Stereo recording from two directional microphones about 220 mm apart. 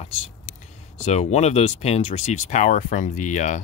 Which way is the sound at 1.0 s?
30° left (ahead or behind).